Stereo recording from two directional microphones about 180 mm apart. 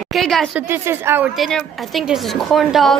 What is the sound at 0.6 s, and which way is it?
Speech, 15° right (ahead or behind).